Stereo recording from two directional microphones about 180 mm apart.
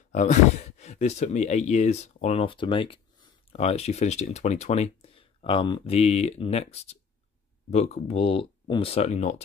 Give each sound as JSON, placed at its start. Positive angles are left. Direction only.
{"t": 0.1, "sound": "speech", "side_deg": 40}